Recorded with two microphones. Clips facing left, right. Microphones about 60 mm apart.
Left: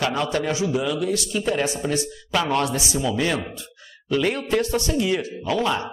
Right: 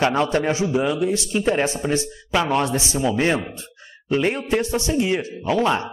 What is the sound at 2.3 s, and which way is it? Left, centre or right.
Speech, centre.